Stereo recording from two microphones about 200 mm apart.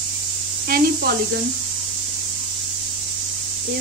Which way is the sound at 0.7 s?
50° right (ahead or behind).